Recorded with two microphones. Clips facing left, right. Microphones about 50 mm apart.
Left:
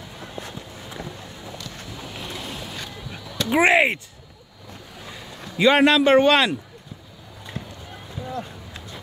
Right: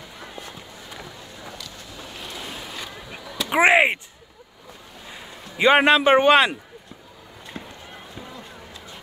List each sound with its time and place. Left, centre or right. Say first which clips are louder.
2.3 s boat: left 1 dB; centre
3.4 s speech: right 1 dB; centre
5.1 s a man's voice: left 3 dB; right
7.5 s run: left 1 dB; right